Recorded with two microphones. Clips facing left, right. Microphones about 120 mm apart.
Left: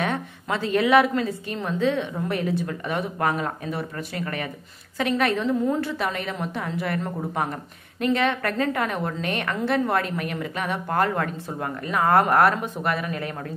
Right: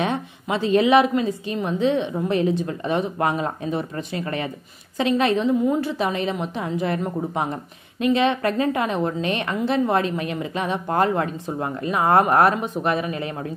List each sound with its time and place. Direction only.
0.0 s a woman's voice: 20° right (ahead or behind)